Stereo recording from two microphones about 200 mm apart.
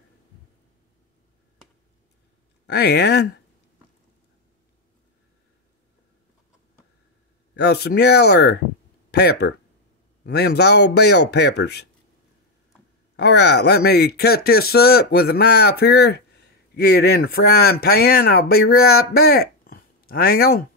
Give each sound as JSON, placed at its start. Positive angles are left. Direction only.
{"t": 2.6, "sound": "a man's voice", "side_deg": 55}
{"t": 7.5, "sound": "a man's voice", "side_deg": 55}
{"t": 13.1, "sound": "speech", "side_deg": 55}